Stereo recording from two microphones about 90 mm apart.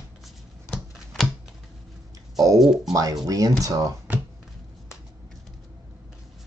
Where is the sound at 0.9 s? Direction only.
Centre (ahead or behind).